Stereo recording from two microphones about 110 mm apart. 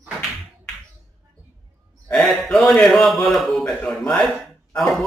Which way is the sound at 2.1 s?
Centre (ahead or behind).